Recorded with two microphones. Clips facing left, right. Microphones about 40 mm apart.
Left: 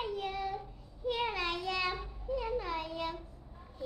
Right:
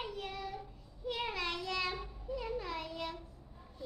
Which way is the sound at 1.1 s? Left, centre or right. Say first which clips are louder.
Left 4 dB; centre.